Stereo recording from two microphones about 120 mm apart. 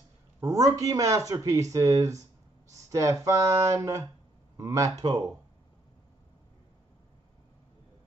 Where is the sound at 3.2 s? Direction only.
25° right (ahead or behind).